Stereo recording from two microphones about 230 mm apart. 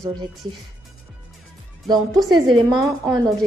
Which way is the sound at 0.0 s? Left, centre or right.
Centre.